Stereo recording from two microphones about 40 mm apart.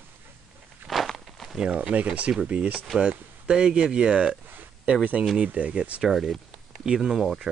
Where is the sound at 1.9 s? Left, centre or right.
Right.